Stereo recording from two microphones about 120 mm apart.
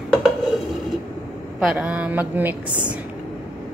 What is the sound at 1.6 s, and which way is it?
Speech, 5° right (ahead or behind).